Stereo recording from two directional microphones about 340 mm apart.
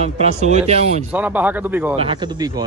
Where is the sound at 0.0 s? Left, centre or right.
Centre.